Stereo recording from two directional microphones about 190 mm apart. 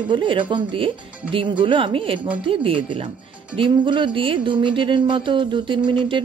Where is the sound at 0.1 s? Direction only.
25° right (ahead or behind).